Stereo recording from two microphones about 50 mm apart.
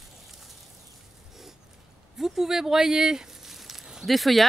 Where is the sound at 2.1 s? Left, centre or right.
Centre.